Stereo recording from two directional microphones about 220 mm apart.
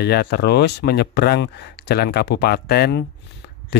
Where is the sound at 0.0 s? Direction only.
45° left (ahead or behind).